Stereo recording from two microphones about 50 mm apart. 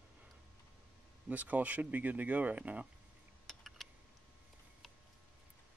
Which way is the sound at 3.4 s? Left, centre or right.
Centre.